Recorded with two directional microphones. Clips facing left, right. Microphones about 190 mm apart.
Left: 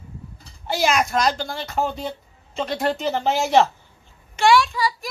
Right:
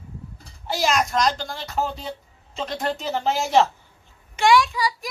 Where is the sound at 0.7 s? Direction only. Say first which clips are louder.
Left 2 dB; 5° left (ahead or behind).